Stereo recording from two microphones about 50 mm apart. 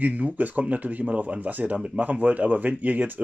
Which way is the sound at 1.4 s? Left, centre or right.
Right.